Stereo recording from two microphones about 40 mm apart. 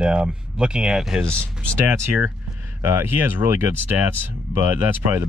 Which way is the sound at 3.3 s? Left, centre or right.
Right.